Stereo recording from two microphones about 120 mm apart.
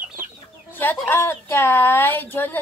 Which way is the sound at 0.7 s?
15° left (ahead or behind).